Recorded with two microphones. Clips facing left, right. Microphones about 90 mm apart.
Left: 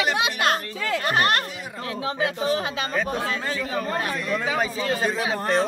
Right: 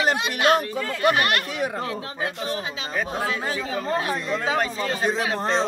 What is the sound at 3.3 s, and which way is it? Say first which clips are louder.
Speech: even; 15° right (ahead or behind).